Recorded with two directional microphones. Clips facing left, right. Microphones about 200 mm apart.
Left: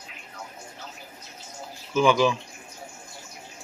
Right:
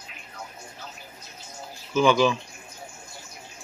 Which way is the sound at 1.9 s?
10° left (ahead or behind).